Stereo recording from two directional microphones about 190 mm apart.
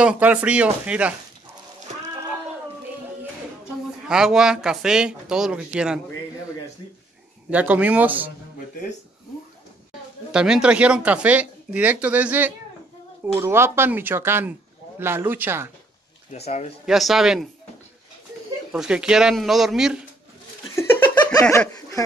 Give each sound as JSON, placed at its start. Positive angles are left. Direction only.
{"t": 0.0, "sound": "speech", "side_deg": -5}
{"t": 4.1, "sound": "speech", "side_deg": -5}
{"t": 7.5, "sound": "speech", "side_deg": -10}
{"t": 10.3, "sound": "speech", "side_deg": -5}
{"t": 16.3, "sound": "speech", "side_deg": 35}
{"t": 16.8, "sound": "speech", "side_deg": 0}
{"t": 18.7, "sound": "speech", "side_deg": -5}
{"t": 20.7, "sound": "laughter", "side_deg": 10}